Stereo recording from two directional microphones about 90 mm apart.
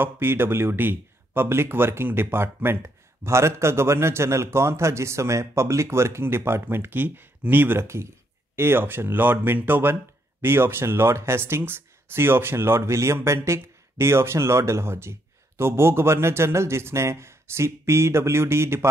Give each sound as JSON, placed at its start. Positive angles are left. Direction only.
{"t": 0.0, "sound": "speech", "side_deg": -25}